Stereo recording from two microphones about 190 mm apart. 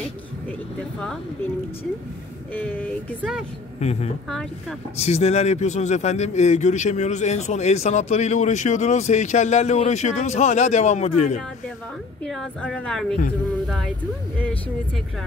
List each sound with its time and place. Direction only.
2.5 s a sound: 10° left (ahead or behind)
3.2 s a woman's voice: centre (ahead or behind)
3.8 s a man's voice: 35° left (ahead or behind)
4.3 s a woman's voice: 5° left (ahead or behind)
4.9 s a man's voice: 35° left (ahead or behind)
12.3 s a woman's voice: 5° left (ahead or behind)